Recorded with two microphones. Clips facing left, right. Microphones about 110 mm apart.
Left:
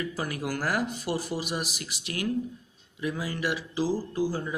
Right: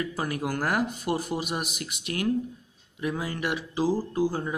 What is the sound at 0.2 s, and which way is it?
Speech, 40° right (ahead or behind).